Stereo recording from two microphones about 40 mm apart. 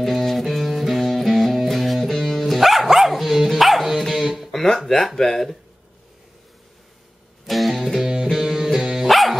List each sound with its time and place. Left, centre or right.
0.0 s music: centre
3.4 s dog: centre
4.2 s guitar: centre
4.5 s a sound: centre
4.8 s speech: centre
7.4 s music: centre
8.0 s music: centre
8.3 s music: centre
9.1 s dog: centre